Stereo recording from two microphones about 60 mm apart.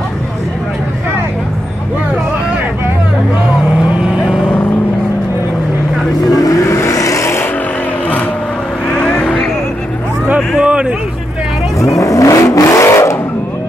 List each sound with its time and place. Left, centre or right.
6.3 s vehicle: left
6.7 s vehicle: left
8.8 s vehicle: centre
10.6 s a sound: centre
11.8 s vehicle: left